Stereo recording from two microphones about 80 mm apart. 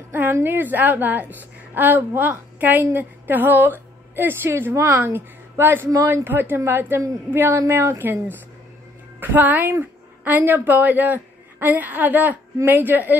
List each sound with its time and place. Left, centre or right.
0.1 s a woman's voice: right